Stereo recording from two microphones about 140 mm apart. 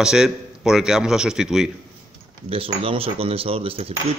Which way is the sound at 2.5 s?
40° right (ahead or behind).